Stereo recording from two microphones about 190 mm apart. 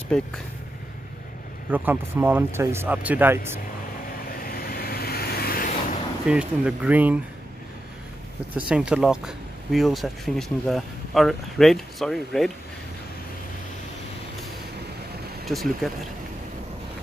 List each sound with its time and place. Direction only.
1.7 s speech: 10° right (ahead or behind)
4.4 s vehicle: 50° left (ahead or behind)
6.2 s speech: 5° right (ahead or behind)
8.5 s speech: 5° right (ahead or behind)
15.4 s speech: centre (ahead or behind)